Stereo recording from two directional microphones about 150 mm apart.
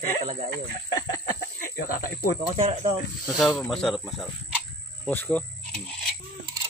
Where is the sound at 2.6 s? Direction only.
40° right (ahead or behind).